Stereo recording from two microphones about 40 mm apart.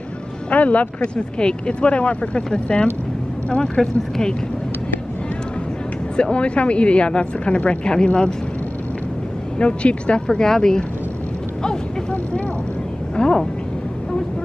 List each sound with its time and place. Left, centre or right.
0.5 s speech: left; by 4.4 s centre
6.1 s speech: left
9.6 s speech: left
13.1 s speech: left